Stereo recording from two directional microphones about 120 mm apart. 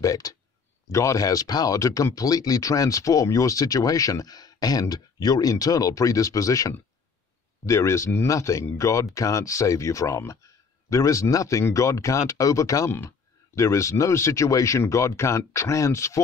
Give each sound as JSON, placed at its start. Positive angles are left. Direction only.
{"t": 0.0, "sound": "speech", "side_deg": 30}